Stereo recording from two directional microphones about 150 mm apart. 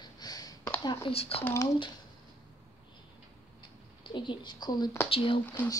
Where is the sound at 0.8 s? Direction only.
35° left (ahead or behind).